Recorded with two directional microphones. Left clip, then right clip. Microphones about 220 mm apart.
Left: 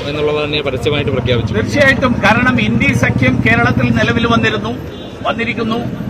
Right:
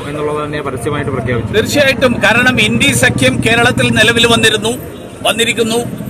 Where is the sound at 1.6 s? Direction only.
25° right (ahead or behind).